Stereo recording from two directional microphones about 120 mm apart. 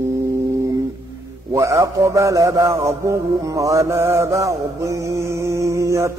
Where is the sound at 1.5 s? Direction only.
25° right (ahead or behind).